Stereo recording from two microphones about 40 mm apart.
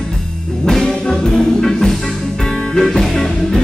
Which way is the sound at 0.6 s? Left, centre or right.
Centre.